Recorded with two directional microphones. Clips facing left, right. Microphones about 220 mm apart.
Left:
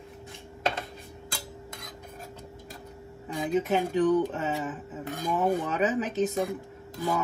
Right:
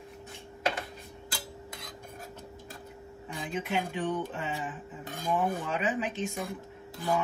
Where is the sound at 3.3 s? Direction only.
40° left (ahead or behind).